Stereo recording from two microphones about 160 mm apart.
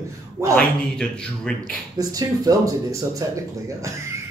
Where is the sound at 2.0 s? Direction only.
25° right (ahead or behind).